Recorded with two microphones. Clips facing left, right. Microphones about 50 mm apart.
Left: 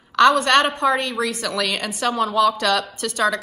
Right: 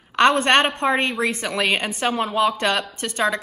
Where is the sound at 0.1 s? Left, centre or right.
Right.